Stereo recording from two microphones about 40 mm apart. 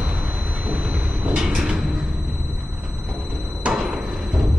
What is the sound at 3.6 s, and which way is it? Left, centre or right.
Music, right.